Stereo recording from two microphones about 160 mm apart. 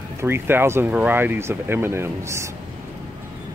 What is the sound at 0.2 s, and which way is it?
Speech, 15° right (ahead or behind).